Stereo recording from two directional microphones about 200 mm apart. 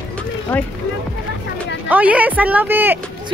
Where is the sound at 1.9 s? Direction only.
5° right (ahead or behind).